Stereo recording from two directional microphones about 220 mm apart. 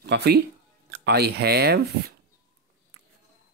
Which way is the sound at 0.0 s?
50° right (ahead or behind).